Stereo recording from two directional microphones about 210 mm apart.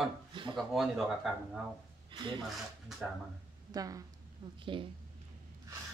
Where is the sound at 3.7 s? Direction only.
15° right (ahead or behind).